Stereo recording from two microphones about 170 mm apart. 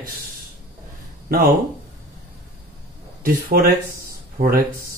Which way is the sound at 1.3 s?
60° right (ahead or behind).